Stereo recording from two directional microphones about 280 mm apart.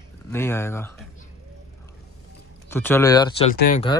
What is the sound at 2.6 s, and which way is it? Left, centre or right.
Speech, centre.